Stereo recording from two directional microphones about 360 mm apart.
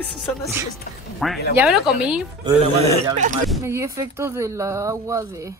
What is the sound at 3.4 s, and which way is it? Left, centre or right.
Speech, centre.